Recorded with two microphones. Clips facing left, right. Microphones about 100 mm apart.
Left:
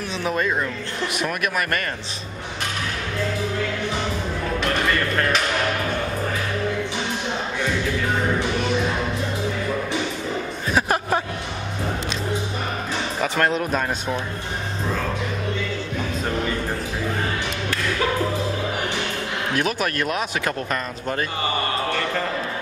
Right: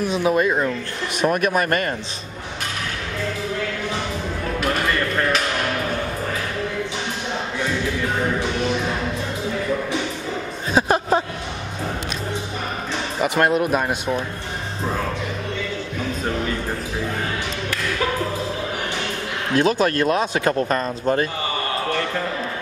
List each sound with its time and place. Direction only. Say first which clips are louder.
0.1 s speech: right 3 dB; 15° right (ahead or behind)
1.1 s a man's voice: right 7 dB; 35° right (ahead or behind)
10.7 s a sound: right 3 dB; 25° right (ahead or behind)
13.2 s speech: right 4 dB; 10° right (ahead or behind)
19.5 s speech: right 7 dB; 25° right (ahead or behind)